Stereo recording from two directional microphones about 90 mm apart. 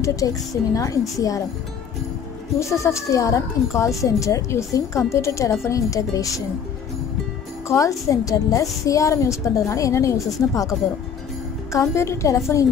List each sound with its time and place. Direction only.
0.0 s a woman's voice: 40° left (ahead or behind)
2.6 s a woman's voice: 35° left (ahead or behind)
7.6 s a woman's voice: 35° left (ahead or behind)